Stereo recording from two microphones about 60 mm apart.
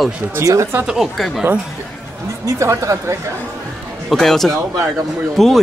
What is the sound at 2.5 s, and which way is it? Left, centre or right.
Speech, right.